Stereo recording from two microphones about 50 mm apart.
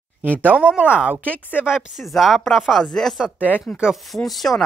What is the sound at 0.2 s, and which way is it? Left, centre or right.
Speech, right.